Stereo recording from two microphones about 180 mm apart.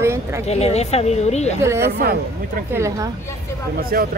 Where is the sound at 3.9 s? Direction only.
55° right (ahead or behind).